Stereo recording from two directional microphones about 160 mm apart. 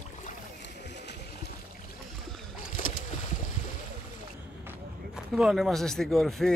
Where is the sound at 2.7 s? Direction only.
55° left (ahead or behind).